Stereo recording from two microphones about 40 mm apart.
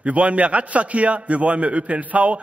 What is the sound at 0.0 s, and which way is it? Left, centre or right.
A man's voice, right.